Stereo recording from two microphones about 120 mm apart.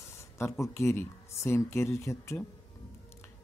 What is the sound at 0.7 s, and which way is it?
Speech, 20° left (ahead or behind).